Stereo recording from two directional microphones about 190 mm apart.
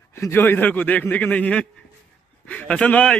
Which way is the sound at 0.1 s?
15° left (ahead or behind).